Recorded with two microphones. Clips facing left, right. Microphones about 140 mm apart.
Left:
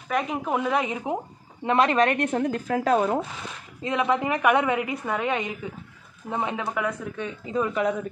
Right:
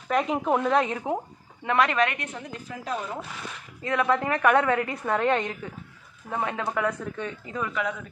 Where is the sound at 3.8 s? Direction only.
20° left (ahead or behind).